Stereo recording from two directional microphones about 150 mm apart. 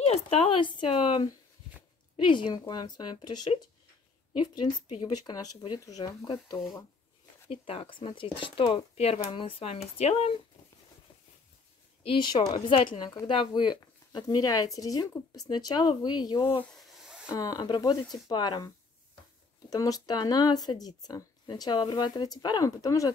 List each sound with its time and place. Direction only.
0.0 s speech: 40° left (ahead or behind)
4.8 s speech: 35° left (ahead or behind)
7.4 s speech: 40° left (ahead or behind)
12.0 s speech: 35° left (ahead or behind)
16.7 s a sound: centre (ahead or behind)
17.3 s speech: 25° left (ahead or behind)
19.7 s speech: 25° left (ahead or behind)